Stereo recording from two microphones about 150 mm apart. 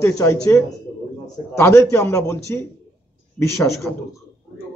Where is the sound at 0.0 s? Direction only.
20° left (ahead or behind).